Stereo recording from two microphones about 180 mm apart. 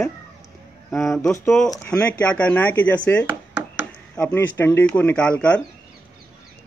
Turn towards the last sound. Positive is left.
turn(degrees=5)  # may be behind; listen again after turning